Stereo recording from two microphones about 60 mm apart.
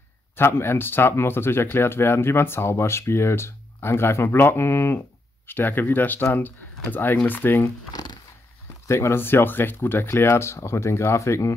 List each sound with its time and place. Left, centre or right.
0.4 s speech: left
8.8 s speech: left